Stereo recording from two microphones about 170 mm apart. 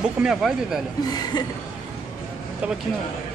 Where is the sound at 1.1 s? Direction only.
25° left (ahead or behind).